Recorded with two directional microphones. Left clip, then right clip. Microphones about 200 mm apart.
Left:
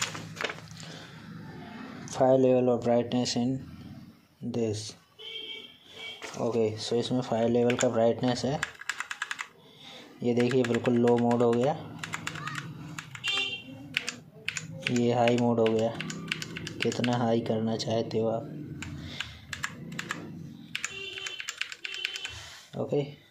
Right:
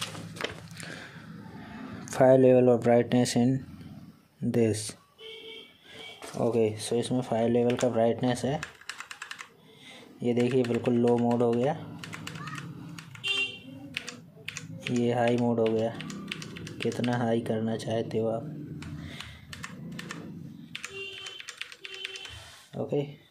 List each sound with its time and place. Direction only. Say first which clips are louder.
0.0 s a sound: left 2 dB; 30° right (ahead or behind)
2.0 s speech: right 3 dB; 25° right (ahead or behind)
6.4 s speech: right 2 dB; 15° right (ahead or behind)
13.9 s computer keyboard: left 6 dB; 5° left (ahead or behind)
15.2 s speech: left 1 dB; 5° left (ahead or behind)
15.5 s typing: left 1 dB; centre (ahead or behind)
16.7 s speech: left 1 dB; 5° left (ahead or behind)
17.1 s a sound: even; 5° right (ahead or behind)
20.7 s computer keyboard: left 3 dB; 5° left (ahead or behind)
22.8 s speech: left 1 dB; 5° right (ahead or behind)